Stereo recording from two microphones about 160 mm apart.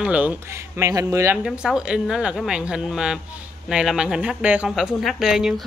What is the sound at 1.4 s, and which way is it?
Speech, 5° right (ahead or behind).